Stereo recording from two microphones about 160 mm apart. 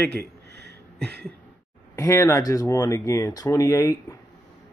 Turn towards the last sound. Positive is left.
turn(degrees=20)  # may be behind; listen again after turning